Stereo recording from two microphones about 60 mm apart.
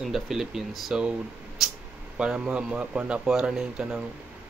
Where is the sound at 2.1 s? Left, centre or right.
Centre.